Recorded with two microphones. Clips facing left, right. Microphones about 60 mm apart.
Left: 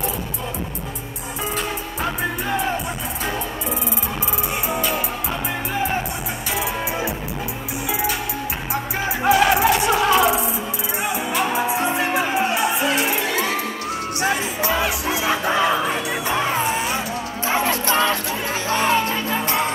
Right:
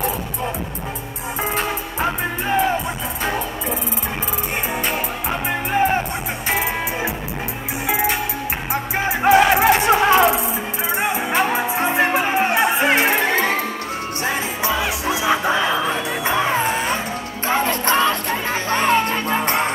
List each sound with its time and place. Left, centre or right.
1.6 s music: right
7.9 s music: right
14.8 s music: right
16.6 s music: right